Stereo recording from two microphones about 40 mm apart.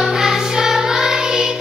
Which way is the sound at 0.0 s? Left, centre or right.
Centre.